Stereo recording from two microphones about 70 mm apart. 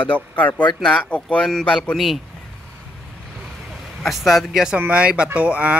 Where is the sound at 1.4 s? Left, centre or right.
Centre.